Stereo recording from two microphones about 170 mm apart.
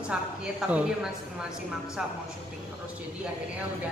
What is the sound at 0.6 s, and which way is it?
Speech, 5° right (ahead or behind).